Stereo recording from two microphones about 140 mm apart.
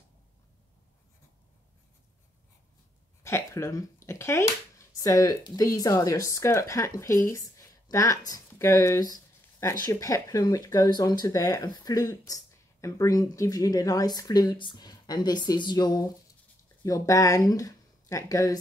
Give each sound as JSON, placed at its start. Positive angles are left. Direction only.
{"t": 3.3, "sound": "speech", "side_deg": 20}